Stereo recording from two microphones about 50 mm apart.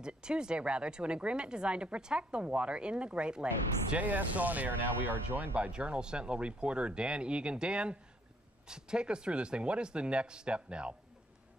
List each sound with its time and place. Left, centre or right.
0.0 s speech: centre
3.9 s speech: right
5.6 s speech: right